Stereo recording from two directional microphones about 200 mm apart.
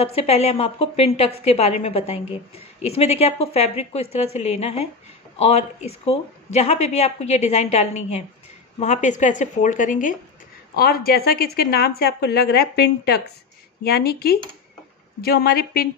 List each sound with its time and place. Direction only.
0.0 s a woman's voice: 30° left (ahead or behind); by 15.9 s 50° left (ahead or behind)